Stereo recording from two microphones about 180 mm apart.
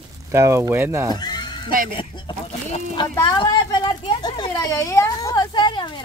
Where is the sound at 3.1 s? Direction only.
15° left (ahead or behind).